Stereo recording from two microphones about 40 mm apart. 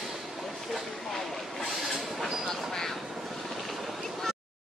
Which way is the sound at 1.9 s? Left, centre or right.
Centre.